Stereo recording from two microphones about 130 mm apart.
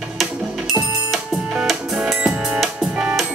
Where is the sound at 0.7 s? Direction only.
Centre (ahead or behind).